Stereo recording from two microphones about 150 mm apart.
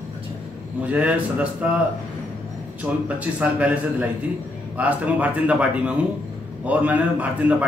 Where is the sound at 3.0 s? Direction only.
10° right (ahead or behind).